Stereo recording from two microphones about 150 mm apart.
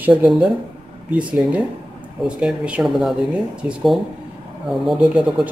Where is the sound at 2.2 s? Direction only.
5° right (ahead or behind).